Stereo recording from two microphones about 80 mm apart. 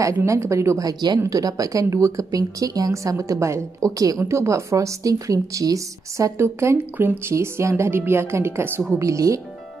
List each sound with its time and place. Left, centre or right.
0.0 s speech: right
1.2 s speech: right
8.9 s speech: right